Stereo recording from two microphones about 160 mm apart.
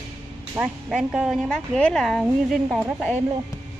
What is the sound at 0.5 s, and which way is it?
Speech, 5° right (ahead or behind).